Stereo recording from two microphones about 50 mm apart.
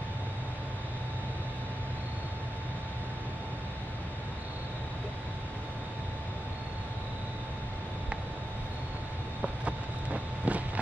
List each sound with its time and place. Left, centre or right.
9.4 s vehicle: right